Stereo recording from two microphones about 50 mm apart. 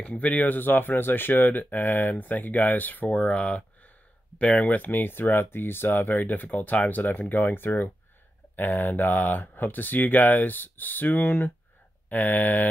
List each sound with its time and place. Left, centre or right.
0.0 s speech: left
4.7 s speech: left